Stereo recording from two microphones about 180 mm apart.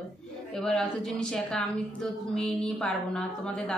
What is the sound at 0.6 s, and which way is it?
A woman's voice, 5° left (ahead or behind).